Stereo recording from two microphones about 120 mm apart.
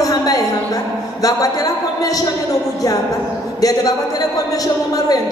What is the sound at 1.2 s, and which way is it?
A man's voice, 30° left (ahead or behind).